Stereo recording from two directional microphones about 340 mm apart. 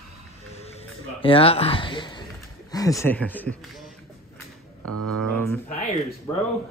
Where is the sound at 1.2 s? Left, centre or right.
Centre.